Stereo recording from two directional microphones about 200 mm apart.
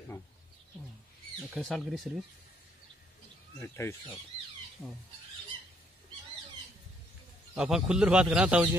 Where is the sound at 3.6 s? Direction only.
15° left (ahead or behind).